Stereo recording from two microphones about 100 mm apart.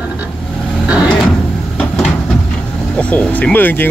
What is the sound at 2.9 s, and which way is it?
Speech, 10° left (ahead or behind).